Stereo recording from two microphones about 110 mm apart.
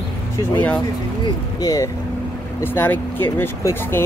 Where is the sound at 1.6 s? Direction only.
35° left (ahead or behind).